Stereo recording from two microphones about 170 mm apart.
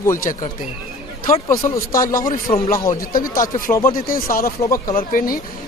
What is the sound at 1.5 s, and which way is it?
Speech, 20° left (ahead or behind).